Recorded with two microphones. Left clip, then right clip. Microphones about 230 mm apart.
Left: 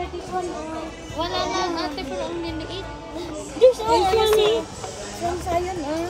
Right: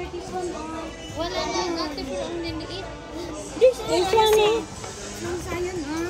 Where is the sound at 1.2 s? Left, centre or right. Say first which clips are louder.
Left 3 dB; centre.